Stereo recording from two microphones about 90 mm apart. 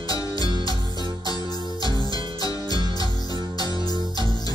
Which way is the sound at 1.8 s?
45° left (ahead or behind).